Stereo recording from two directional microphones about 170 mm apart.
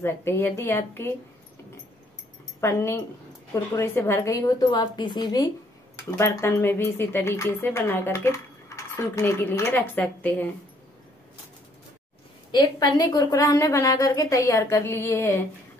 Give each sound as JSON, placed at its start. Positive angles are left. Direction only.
{"t": 0.0, "sound": "speech", "side_deg": 15}
{"t": 2.6, "sound": "a woman's voice", "side_deg": 15}
{"t": 12.4, "sound": "a woman's voice", "side_deg": 25}